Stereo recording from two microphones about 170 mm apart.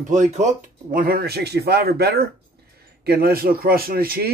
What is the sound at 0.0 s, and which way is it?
Speech, 45° right (ahead or behind).